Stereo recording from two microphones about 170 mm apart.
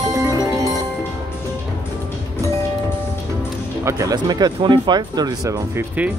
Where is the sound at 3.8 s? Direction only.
20° right (ahead or behind).